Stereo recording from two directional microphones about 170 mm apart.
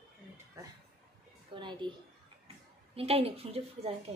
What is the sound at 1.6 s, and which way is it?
Speech, 30° right (ahead or behind).